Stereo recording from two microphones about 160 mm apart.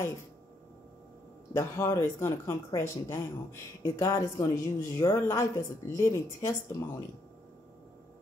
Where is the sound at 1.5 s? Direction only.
15° left (ahead or behind).